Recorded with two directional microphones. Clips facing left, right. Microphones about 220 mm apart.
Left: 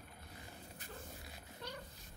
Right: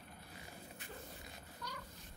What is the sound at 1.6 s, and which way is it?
Cat, 30° left (ahead or behind).